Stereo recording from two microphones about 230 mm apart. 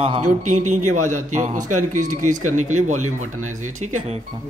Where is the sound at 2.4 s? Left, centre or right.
Right.